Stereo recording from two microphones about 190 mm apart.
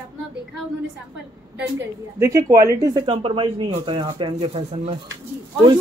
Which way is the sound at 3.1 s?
25° right (ahead or behind).